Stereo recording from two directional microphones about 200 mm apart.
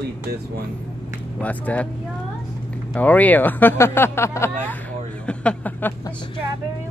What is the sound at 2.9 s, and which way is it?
Speech, 10° left (ahead or behind).